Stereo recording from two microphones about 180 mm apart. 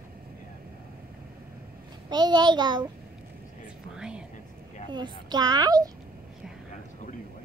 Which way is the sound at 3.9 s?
5° right (ahead or behind).